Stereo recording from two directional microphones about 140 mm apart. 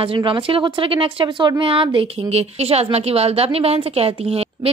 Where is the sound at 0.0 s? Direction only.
40° right (ahead or behind).